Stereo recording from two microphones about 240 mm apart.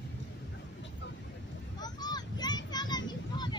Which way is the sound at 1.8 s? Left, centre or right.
Centre.